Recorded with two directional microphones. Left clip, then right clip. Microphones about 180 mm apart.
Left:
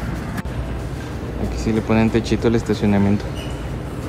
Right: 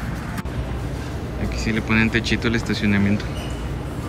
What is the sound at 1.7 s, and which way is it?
Speech, 30° left (ahead or behind).